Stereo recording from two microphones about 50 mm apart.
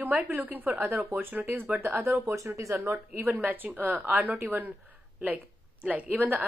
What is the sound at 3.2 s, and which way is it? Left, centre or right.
A woman's voice, right.